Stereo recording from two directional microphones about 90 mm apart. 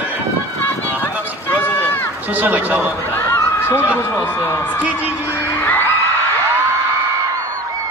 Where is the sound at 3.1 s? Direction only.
25° left (ahead or behind).